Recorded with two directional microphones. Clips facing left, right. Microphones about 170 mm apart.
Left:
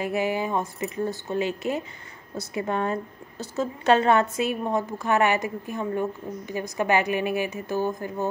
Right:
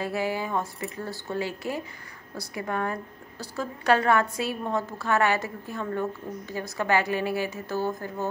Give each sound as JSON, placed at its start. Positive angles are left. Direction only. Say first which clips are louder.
{"t": 0.0, "sound": "a woman's voice", "louder": "left 3 dB", "side_deg": 20}